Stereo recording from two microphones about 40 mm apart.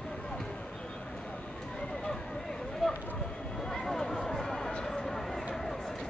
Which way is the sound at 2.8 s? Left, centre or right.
Centre.